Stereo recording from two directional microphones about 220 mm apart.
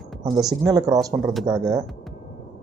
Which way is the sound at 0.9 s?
Centre (ahead or behind).